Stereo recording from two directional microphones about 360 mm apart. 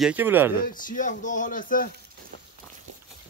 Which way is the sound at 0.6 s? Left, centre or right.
Left.